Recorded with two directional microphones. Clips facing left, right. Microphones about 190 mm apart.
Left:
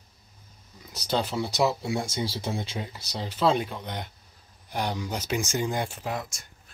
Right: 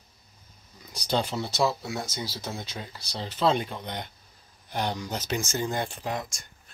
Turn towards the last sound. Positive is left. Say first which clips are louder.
# even
turn(degrees=5)  # may be behind; listen again after turning